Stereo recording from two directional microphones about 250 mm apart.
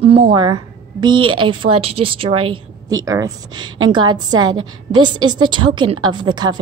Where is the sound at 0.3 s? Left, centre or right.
Centre.